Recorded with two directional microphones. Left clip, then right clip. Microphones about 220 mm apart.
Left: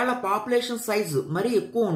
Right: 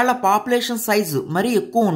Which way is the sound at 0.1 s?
45° right (ahead or behind).